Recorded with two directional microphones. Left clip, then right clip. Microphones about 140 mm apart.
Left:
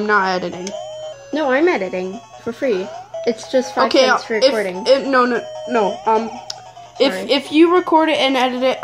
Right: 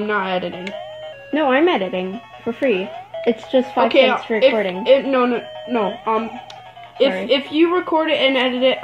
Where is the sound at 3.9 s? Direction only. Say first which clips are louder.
Left 1 dB; 45° left (ahead or behind).